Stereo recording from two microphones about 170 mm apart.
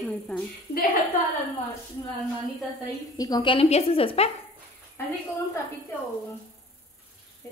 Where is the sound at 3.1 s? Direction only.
20° left (ahead or behind).